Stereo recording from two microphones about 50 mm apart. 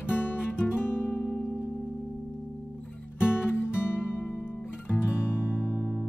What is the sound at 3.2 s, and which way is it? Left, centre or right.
Music, left.